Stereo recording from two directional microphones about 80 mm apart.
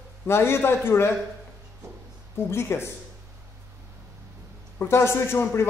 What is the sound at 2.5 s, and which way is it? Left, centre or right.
Speech, left.